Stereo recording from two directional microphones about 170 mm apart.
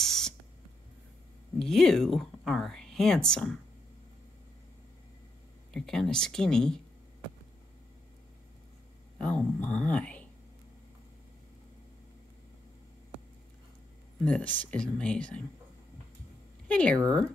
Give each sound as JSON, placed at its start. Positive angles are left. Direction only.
{"t": 0.0, "sound": "spray", "side_deg": 5}
{"t": 1.6, "sound": "speech", "side_deg": 0}
{"t": 5.7, "sound": "speech", "side_deg": 5}
{"t": 9.2, "sound": "speech", "side_deg": 5}
{"t": 14.2, "sound": "speech", "side_deg": 10}
{"t": 16.6, "sound": "speech", "side_deg": 5}